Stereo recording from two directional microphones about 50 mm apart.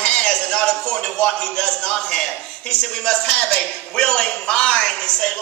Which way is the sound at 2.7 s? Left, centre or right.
Centre.